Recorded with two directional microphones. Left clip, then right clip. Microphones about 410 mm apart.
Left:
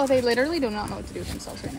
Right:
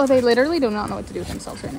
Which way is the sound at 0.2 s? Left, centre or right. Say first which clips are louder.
Right 6 dB; right.